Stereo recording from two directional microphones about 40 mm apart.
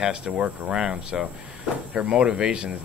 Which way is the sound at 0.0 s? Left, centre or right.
Right.